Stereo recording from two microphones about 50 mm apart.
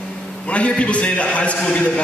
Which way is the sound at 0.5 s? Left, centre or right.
Left.